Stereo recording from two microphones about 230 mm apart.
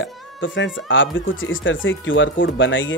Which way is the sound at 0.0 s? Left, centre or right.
Left.